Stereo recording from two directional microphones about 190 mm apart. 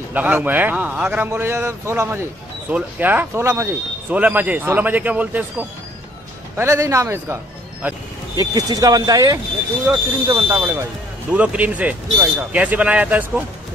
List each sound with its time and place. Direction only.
0.1 s a man's voice: 10° right (ahead or behind)